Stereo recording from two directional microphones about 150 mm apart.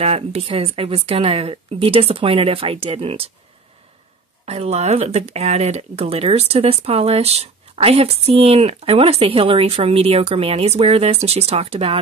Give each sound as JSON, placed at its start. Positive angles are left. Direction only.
{"t": 0.0, "sound": "speech", "side_deg": -40}
{"t": 4.5, "sound": "speech", "side_deg": -45}